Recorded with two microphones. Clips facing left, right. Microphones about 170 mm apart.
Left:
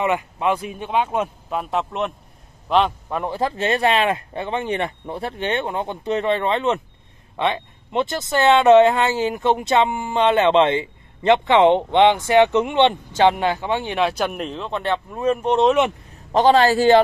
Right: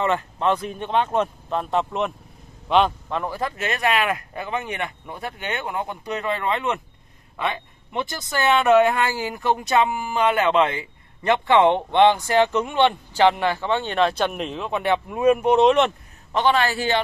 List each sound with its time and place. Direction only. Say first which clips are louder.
0.0 s a man's voice: left 1 dB; 10° left (ahead or behind)
3.2 s speech: left 4 dB; 25° left (ahead or behind); by 15.7 s 5° right (ahead or behind)
16.3 s a man's voice: left 6 dB; 40° left (ahead or behind)